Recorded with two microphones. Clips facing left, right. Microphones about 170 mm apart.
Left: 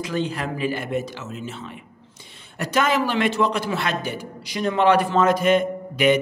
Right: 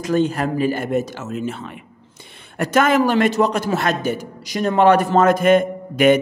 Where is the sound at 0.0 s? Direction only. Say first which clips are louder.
Right 7 dB; 45° right (ahead or behind).